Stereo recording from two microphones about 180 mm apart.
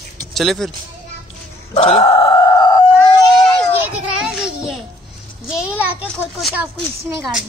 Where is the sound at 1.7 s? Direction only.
35° left (ahead or behind).